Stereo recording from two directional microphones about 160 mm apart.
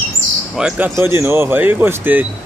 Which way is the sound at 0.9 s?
15° right (ahead or behind).